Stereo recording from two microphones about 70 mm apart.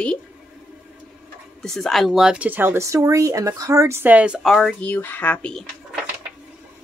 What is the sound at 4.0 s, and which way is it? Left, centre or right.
Speech, right.